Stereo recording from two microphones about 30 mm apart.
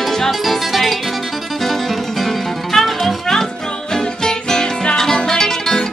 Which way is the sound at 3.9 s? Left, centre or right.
Left.